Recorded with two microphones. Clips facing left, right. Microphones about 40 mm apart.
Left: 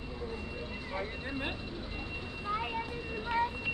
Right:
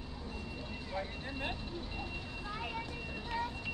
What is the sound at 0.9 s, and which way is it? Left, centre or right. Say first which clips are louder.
Speech: left 3 dB; centre.